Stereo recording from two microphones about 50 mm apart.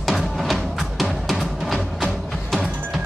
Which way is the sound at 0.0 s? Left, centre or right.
Centre.